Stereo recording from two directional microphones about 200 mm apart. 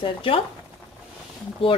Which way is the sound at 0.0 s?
25° left (ahead or behind).